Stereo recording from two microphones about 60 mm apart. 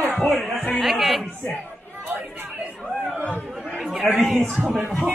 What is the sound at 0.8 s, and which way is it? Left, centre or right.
Chatter, centre.